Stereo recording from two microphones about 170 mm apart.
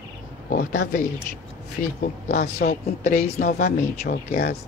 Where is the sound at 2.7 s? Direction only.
50° left (ahead or behind).